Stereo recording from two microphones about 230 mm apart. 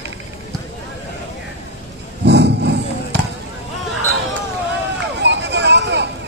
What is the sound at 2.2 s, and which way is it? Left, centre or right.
Roaring cats, right.